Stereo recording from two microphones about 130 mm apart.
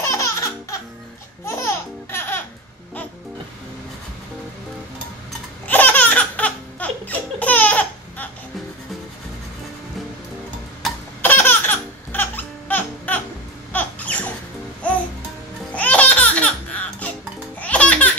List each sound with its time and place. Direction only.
0.0 s music: 25° left (ahead or behind)
1.4 s laughter: 20° left (ahead or behind)
5.7 s laughter: 15° left (ahead or behind)
11.2 s music: 15° left (ahead or behind)
13.7 s a sound: 10° left (ahead or behind)
15.7 s music: 10° left (ahead or behind)
17.6 s music: 10° left (ahead or behind)